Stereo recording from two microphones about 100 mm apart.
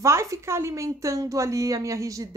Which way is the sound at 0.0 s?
30° right (ahead or behind).